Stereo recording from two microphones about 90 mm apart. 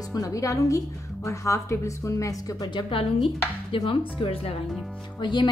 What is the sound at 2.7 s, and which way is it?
A woman's voice, 65° left (ahead or behind).